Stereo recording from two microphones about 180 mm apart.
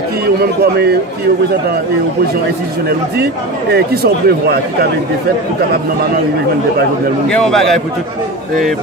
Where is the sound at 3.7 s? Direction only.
60° right (ahead or behind).